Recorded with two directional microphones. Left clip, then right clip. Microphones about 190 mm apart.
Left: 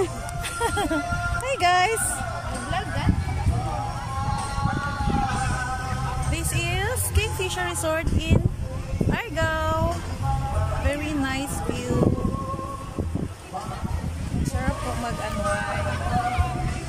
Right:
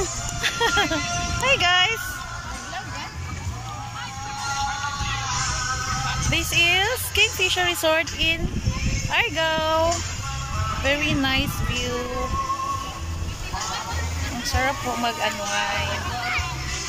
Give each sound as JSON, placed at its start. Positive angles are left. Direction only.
{"t": 0.4, "sound": "music", "side_deg": 5}
{"t": 1.4, "sound": "speech", "side_deg": 25}
{"t": 6.3, "sound": "speech", "side_deg": 0}
{"t": 10.9, "sound": "speech", "side_deg": 0}